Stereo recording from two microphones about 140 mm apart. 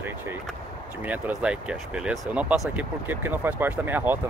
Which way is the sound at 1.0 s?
10° right (ahead or behind).